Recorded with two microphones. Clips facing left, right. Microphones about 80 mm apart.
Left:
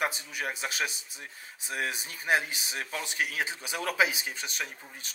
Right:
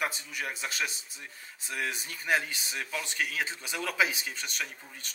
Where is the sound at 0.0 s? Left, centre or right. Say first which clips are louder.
Left 2 dB; centre.